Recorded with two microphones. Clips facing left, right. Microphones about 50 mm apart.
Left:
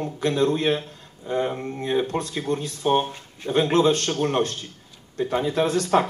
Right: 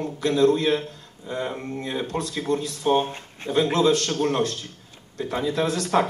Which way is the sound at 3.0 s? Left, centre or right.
Right.